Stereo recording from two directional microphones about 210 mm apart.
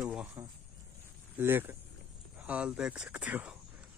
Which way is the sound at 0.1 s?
10° right (ahead or behind).